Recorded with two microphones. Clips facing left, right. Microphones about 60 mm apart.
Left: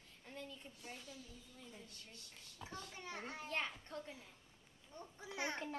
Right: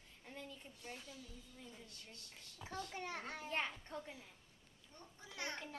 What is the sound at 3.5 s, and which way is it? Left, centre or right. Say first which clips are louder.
Speech: right 1 dB; right.